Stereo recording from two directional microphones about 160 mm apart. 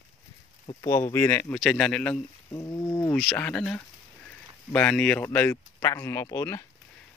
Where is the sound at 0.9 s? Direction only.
20° left (ahead or behind).